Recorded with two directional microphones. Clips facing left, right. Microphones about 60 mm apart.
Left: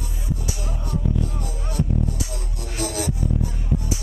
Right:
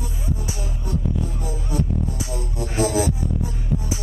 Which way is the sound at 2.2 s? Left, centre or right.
Right.